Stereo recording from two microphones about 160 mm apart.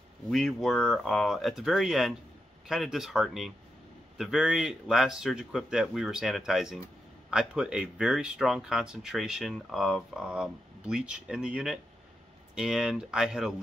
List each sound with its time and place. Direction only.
0.3 s speech: centre (ahead or behind)